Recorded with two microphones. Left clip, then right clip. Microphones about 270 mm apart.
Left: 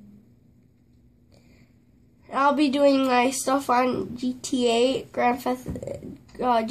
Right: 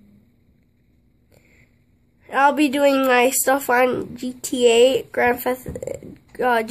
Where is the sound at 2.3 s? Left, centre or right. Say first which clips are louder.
Right 4 dB; right.